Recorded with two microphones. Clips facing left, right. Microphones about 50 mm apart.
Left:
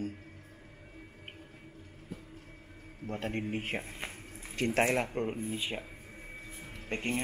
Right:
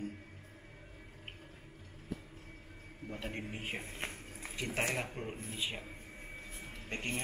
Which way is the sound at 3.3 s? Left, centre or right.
Left.